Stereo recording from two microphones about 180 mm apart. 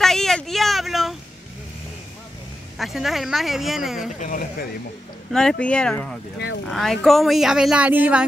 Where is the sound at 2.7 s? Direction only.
Centre (ahead or behind).